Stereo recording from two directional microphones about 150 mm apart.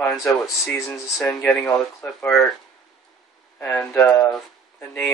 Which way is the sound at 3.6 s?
15° left (ahead or behind).